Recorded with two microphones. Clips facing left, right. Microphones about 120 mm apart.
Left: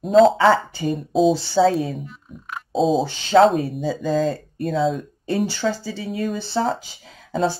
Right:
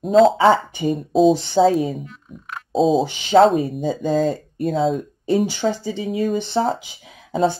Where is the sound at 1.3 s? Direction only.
20° right (ahead or behind).